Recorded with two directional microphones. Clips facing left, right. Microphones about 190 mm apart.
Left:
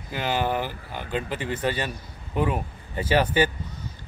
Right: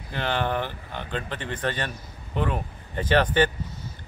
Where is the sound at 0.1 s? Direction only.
10° left (ahead or behind).